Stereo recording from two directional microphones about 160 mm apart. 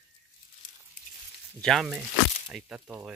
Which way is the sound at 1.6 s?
Centre (ahead or behind).